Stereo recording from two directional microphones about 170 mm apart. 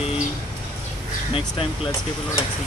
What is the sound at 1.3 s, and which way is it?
Speech, 30° left (ahead or behind).